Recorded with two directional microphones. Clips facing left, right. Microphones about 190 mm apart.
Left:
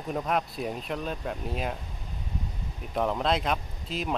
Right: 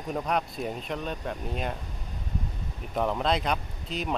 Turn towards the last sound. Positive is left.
turn(degrees=0)  # may be behind; listen again after turning